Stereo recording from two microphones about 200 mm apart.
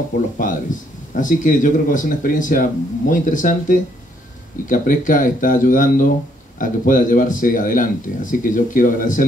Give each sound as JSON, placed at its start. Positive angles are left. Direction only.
{"t": 0.4, "sound": "speech", "side_deg": 40}